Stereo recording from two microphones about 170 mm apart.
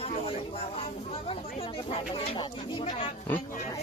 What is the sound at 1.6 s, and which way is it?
Speech, 35° left (ahead or behind).